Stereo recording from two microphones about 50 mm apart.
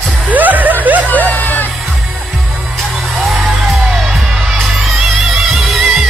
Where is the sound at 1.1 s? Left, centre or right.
Left.